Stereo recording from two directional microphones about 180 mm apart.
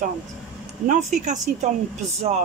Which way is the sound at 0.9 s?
40° right (ahead or behind).